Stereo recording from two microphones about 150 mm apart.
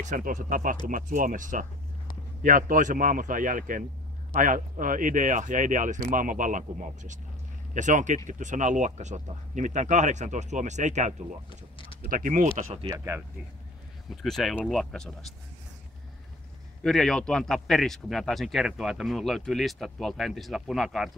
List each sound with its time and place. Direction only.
0.0 s speech: 60° right (ahead or behind)
11.8 s a sound: 35° left (ahead or behind)
12.1 s speech: 65° right (ahead or behind)
12.4 s speech: 50° right (ahead or behind)
12.8 s speech: 15° right (ahead or behind)
14.2 s a man's voice: centre (ahead or behind)
16.8 s a man's voice: 5° left (ahead or behind)